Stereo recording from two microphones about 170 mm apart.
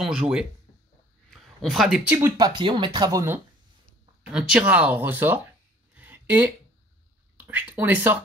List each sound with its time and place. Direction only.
0.0 s speech: 5° right (ahead or behind)
2.1 s speech: 20° right (ahead or behind)
4.3 s speech: 5° right (ahead or behind)
5.9 s a sound: 10° right (ahead or behind)
7.4 s speech: 10° right (ahead or behind)